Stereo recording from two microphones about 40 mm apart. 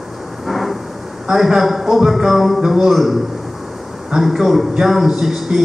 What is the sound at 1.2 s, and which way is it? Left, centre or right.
A man's voice, centre.